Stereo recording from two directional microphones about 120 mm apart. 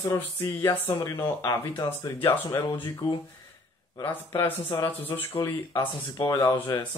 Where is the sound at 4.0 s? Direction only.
20° left (ahead or behind).